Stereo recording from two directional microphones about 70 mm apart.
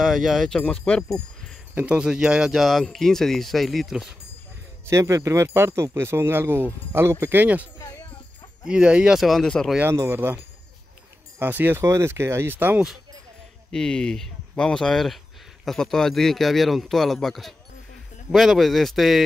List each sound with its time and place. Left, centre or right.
0.0 s speech: centre
1.8 s speech: centre
2.6 s speech: centre
4.8 s speech: right
8.6 s speech: centre
9.2 s speech: centre
9.8 s speech: right
11.8 s speech: right
13.7 s speech: centre